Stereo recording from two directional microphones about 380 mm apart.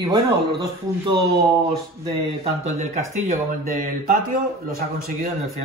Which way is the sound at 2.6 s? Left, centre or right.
Centre.